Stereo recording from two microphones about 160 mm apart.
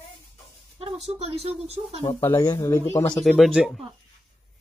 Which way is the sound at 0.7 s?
40° right (ahead or behind).